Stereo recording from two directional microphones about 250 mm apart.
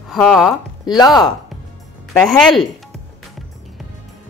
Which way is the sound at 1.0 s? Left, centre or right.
Centre.